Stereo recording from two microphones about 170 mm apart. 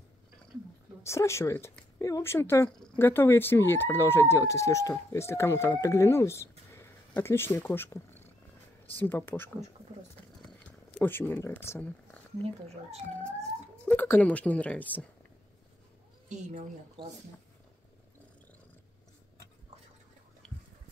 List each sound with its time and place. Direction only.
1.0 s speech: 15° left (ahead or behind)
6.7 s cat: 15° left (ahead or behind)
8.9 s speech: 10° left (ahead or behind)
11.0 s speech: 10° left (ahead or behind)
13.8 s speech: 10° left (ahead or behind)
16.3 s a woman's voice: 45° right (ahead or behind)